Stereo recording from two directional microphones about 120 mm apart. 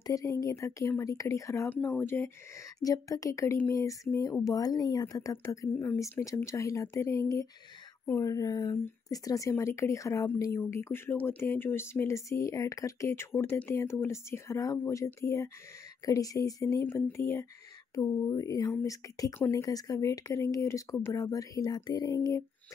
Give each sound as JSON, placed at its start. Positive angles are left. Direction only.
{"t": 0.0, "sound": "speech", "side_deg": 30}
{"t": 8.7, "sound": "speech", "side_deg": 20}